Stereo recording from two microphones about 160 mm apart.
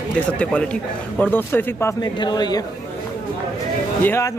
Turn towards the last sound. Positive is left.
turn(degrees=15)  # may be behind; listen again after turning